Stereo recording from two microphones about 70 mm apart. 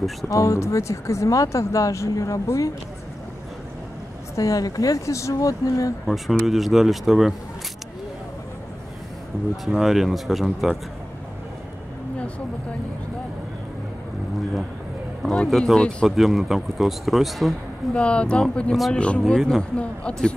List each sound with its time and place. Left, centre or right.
0.3 s speech: left
4.4 s speech: left
6.0 s speech: centre
9.7 s speech: centre
15.2 s speech: centre
17.9 s speech: centre